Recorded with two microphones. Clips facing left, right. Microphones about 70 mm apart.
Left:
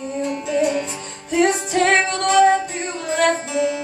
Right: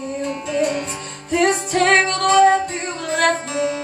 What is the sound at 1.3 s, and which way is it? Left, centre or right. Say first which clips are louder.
Music: even; right.